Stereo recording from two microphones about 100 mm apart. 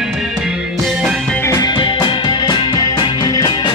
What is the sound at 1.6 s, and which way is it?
Music, 50° left (ahead or behind).